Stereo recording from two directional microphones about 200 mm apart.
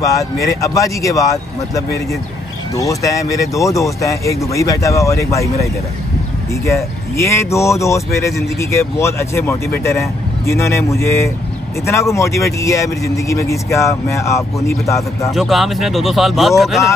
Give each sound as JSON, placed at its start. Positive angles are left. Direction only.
{"t": 0.0, "sound": "speech", "side_deg": 15}
{"t": 2.7, "sound": "speech", "side_deg": 15}
{"t": 15.3, "sound": "speech", "side_deg": 0}